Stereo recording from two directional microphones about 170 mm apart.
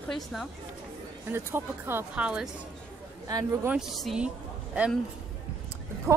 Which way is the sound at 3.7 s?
Centre (ahead or behind).